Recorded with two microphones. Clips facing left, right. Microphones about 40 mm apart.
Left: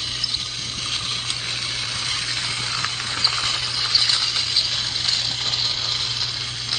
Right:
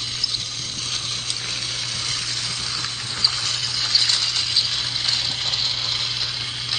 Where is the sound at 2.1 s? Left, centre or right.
Left.